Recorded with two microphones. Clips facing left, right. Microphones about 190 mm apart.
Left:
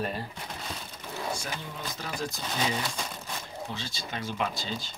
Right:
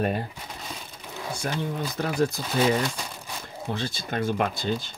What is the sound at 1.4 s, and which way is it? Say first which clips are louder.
Speech: right 9 dB; 60° right (ahead or behind).